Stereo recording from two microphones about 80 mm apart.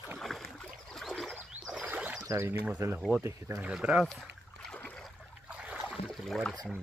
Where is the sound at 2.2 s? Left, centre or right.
Right.